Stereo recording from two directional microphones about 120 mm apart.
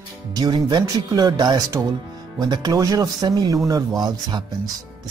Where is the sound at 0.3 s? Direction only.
35° right (ahead or behind).